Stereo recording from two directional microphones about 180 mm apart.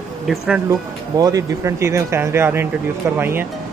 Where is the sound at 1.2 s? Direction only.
20° right (ahead or behind).